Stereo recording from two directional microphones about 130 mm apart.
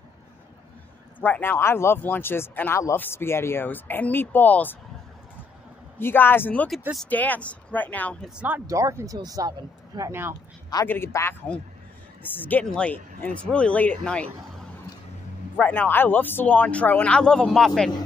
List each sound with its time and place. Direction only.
1.2 s speech: 15° left (ahead or behind)
5.9 s speech: 15° left (ahead or behind)
8.4 s speech: 15° right (ahead or behind)
10.9 s speech: 20° left (ahead or behind)
15.6 s speech: 15° left (ahead or behind)